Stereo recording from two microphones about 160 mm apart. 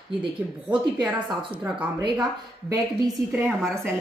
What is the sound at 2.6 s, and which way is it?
Speech, 25° right (ahead or behind).